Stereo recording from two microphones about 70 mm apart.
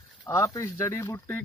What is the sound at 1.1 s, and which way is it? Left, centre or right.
Speech, left.